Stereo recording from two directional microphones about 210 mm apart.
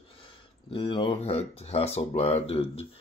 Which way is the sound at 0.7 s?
25° left (ahead or behind).